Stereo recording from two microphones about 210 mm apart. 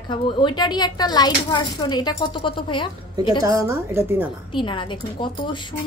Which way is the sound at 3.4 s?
15° right (ahead or behind).